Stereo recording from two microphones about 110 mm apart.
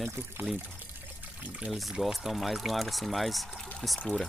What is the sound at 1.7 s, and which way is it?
Speech, centre (ahead or behind).